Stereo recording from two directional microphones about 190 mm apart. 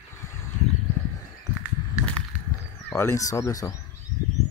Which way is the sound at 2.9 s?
10° left (ahead or behind).